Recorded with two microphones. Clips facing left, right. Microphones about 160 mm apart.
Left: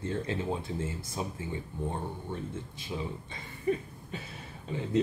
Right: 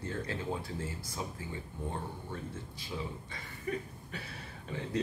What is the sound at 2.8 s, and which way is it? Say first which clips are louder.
Speech: left 3 dB; 25° left (ahead or behind).